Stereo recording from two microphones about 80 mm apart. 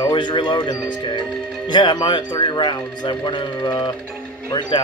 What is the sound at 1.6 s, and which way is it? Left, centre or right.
Speech, left.